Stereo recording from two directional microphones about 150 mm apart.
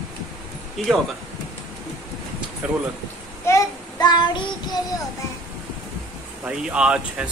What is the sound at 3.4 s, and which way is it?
Child singing, 25° left (ahead or behind).